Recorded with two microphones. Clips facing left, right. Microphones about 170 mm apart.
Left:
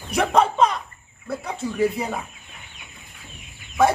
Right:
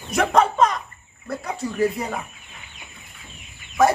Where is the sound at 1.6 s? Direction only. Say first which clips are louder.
Even; centre (ahead or behind).